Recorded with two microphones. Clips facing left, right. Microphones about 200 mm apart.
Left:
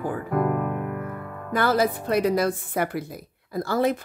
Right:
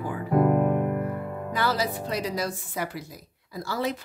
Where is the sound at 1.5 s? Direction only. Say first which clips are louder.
Left 6 dB; 55° left (ahead or behind).